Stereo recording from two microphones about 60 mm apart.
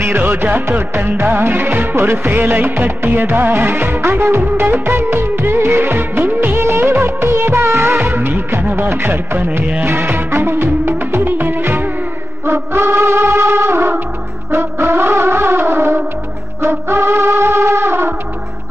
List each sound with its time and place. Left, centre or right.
0.0 s music of bollywood: right
12.4 s wind instrument: right
14.5 s music: right